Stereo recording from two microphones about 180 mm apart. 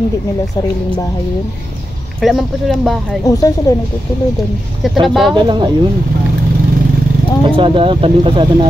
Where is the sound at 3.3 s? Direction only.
20° left (ahead or behind).